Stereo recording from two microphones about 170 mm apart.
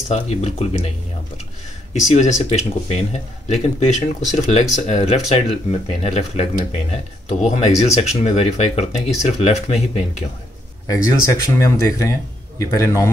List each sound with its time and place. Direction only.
0.1 s speech: 40° left (ahead or behind)
2.0 s speech: 45° left (ahead or behind)
10.9 s a man's voice: 20° left (ahead or behind)